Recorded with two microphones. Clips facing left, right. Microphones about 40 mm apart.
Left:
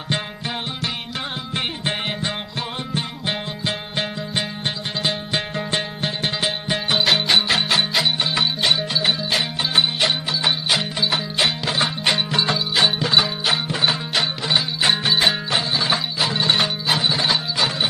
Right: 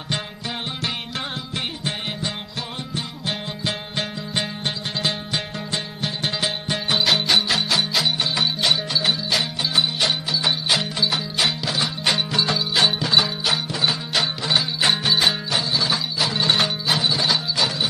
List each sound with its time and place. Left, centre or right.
3.6 s music: centre
6.0 s music: centre
15.7 s music: centre
16.3 s music: centre